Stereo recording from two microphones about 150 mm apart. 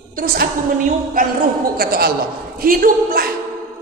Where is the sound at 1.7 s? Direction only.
90° right.